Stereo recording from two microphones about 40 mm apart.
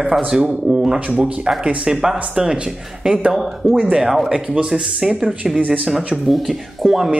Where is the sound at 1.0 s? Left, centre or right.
Right.